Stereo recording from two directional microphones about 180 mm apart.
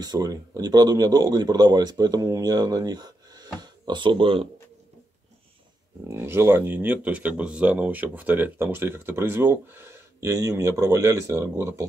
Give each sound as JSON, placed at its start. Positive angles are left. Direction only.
{"t": 0.0, "sound": "speech", "side_deg": -20}
{"t": 6.0, "sound": "speech", "side_deg": -15}